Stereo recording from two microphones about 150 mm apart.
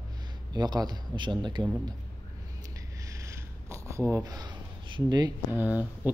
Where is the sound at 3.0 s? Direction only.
20° right (ahead or behind).